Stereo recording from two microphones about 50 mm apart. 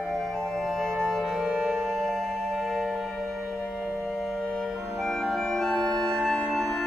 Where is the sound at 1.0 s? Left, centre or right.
Centre.